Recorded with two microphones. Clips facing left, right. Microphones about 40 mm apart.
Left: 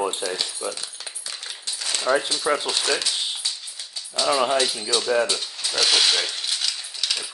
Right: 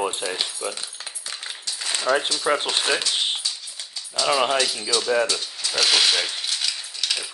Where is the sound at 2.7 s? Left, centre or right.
Right.